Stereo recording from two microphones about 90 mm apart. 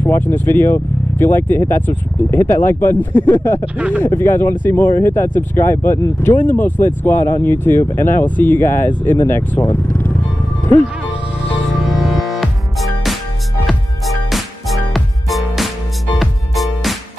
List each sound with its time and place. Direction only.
0.0 s speech: 20° left (ahead or behind)
3.7 s speech: 15° right (ahead or behind)
4.0 s speech: 25° left (ahead or behind)
11.7 s music: centre (ahead or behind)